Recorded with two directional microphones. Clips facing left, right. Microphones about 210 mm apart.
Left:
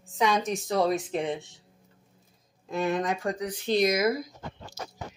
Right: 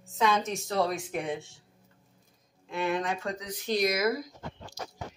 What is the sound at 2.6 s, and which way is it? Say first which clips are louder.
Speech: left 3 dB; 40° left (ahead or behind).